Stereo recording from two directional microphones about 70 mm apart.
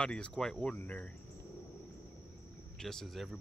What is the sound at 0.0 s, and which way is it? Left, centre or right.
Speech, centre.